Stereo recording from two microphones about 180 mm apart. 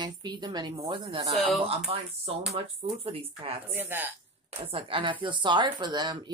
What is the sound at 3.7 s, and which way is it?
Speech, 10° right (ahead or behind).